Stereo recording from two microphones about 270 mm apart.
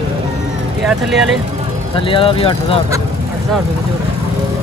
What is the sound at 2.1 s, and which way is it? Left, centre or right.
Speech, centre.